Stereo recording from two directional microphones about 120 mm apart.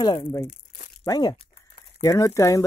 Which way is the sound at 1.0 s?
30° left (ahead or behind).